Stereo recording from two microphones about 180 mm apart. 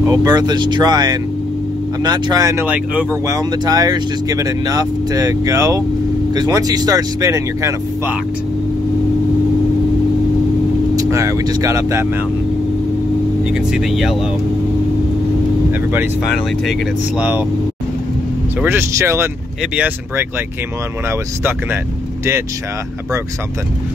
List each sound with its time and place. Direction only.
0.0 s speech: 20° right (ahead or behind)
3.3 s speech: 20° right (ahead or behind)
11.0 s speech: 15° right (ahead or behind)
13.5 s speech: 5° right (ahead or behind)
17.2 s speech: 10° right (ahead or behind)
18.6 s speech: 15° right (ahead or behind)